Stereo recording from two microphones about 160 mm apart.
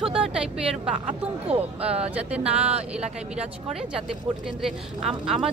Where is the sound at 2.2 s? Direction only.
10° right (ahead or behind).